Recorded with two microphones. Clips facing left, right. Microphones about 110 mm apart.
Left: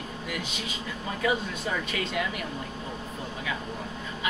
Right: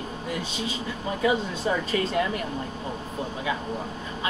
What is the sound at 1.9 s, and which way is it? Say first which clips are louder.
Speech: right 5 dB; 35° right (ahead or behind).